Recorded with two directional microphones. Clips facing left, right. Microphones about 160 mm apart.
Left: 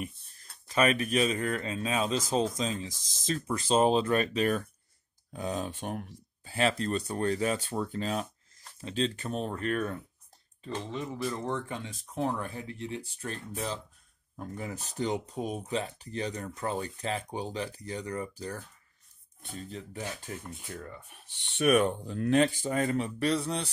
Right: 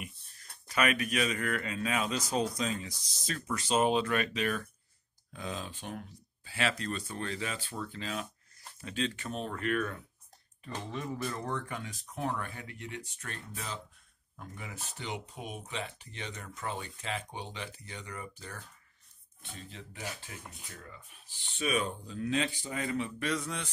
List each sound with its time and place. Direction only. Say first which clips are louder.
0.7 s speech: left 4 dB; 30° left (ahead or behind)
10.6 s speech: left 3 dB; 25° left (ahead or behind); by 20.3 s 40° left (ahead or behind)
20.7 s speech: left 8 dB; 55° left (ahead or behind); by 23.7 s 35° left (ahead or behind)